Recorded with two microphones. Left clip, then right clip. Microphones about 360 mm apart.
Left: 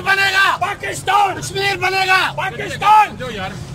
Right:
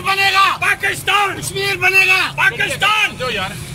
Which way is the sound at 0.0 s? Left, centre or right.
Left.